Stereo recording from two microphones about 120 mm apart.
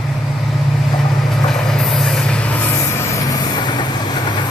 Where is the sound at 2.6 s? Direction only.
25° left (ahead or behind).